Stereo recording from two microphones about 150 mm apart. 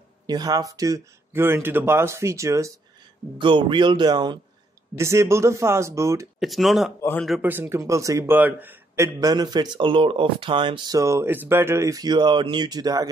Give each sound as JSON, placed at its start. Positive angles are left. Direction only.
{"t": 0.3, "sound": "a man's voice", "side_deg": -25}
{"t": 3.3, "sound": "a man's voice", "side_deg": -35}
{"t": 6.4, "sound": "speech", "side_deg": 0}
{"t": 7.0, "sound": "speech", "side_deg": 15}
{"t": 7.4, "sound": "a man's voice", "side_deg": -15}
{"t": 11.0, "sound": "a man's voice", "side_deg": -20}